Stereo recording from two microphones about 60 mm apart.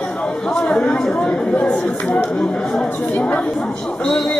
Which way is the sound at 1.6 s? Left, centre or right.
Left.